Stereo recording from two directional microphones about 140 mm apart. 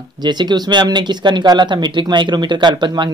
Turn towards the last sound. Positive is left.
turn(degrees=-30)  # may be behind; listen again after turning